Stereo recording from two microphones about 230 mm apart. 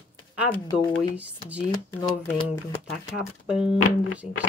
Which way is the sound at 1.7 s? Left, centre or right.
Left.